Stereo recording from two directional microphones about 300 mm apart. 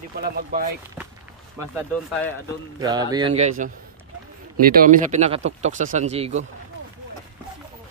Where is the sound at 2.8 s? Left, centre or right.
Centre.